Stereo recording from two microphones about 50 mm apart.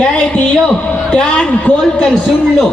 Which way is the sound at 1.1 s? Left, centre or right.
Left.